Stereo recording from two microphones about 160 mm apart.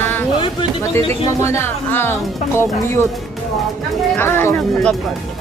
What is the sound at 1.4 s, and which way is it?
Music, 15° left (ahead or behind).